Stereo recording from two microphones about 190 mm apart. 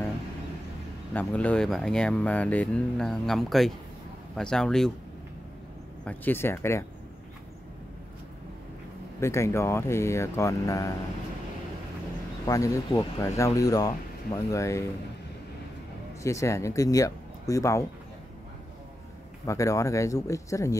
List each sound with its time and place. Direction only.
1.1 s speech: 5° left (ahead or behind)
6.0 s speech: 10° left (ahead or behind)
9.2 s speech: 15° left (ahead or behind)
12.4 s speech: 15° left (ahead or behind)
16.2 s speech: 15° left (ahead or behind)
19.4 s speech: 15° left (ahead or behind)